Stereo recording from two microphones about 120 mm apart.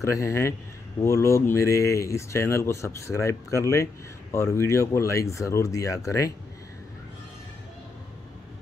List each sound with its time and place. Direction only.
0.0 s speech: 25° left (ahead or behind)